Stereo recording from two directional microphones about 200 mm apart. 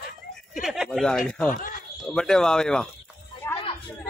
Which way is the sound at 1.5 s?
40° left (ahead or behind).